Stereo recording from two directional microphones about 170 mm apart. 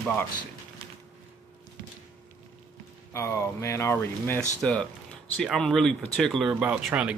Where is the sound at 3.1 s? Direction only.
15° left (ahead or behind); by 7.1 s 5° right (ahead or behind).